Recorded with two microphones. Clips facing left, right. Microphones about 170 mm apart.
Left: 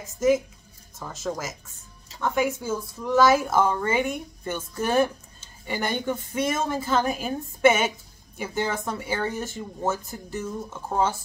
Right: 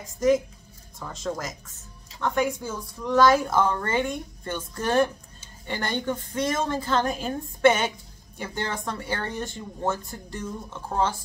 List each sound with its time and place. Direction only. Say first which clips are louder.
0.0 s a woman's voice: even; 5° left (ahead or behind)